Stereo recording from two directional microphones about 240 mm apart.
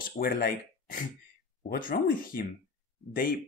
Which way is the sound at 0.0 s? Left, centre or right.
Left.